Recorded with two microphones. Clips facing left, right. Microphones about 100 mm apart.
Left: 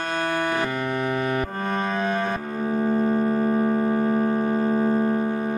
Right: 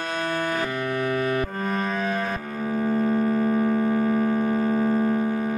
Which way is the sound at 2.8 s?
10° left (ahead or behind).